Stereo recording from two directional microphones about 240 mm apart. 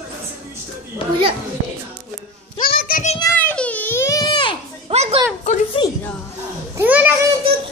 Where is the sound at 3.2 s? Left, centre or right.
Centre.